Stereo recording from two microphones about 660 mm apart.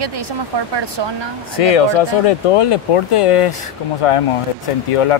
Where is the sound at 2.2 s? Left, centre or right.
Left.